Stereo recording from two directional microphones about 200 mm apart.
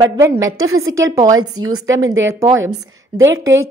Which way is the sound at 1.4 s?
90° right.